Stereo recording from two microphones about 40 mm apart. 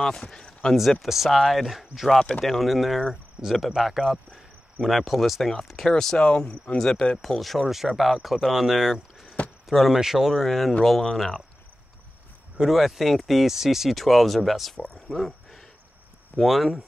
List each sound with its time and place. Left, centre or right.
0.0 s speech: centre
0.5 s a sound: centre
1.0 s speech: centre
6.5 s speech: left
6.8 s speech: centre
7.2 s speech: centre
8.9 s a sound: centre
9.7 s speech: centre
9.9 s speech: centre
10.3 s speech: centre
12.6 s speech: centre
14.9 s a sound: centre
16.3 s speech: centre